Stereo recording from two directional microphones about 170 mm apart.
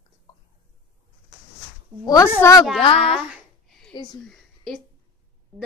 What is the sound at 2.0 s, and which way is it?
Speech, 20° left (ahead or behind).